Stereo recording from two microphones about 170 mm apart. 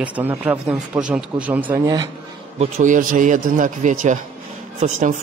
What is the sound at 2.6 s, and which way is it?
Speech, 45° right (ahead or behind).